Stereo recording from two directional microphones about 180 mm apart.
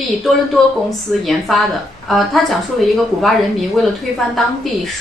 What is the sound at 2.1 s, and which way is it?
A woman's voice, centre (ahead or behind).